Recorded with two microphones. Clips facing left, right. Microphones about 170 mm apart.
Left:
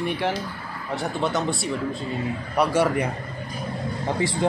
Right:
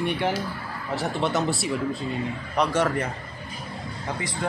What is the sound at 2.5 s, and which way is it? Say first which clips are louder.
Speech: left 2 dB; 10° left (ahead or behind).